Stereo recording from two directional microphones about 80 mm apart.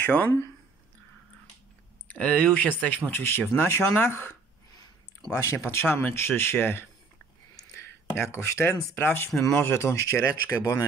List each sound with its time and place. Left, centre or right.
0.0 s speech: left
2.0 s speech: centre
5.4 s speech: left